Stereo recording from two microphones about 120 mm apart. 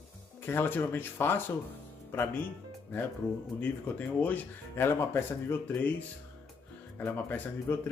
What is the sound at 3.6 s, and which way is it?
Speech, 15° left (ahead or behind).